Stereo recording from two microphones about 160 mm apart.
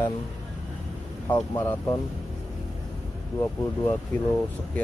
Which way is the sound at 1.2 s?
15° left (ahead or behind).